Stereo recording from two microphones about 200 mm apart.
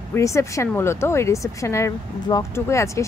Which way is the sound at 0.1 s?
15° left (ahead or behind).